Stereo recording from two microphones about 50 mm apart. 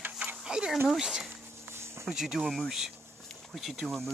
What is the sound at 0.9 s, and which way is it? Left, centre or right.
Speech, centre.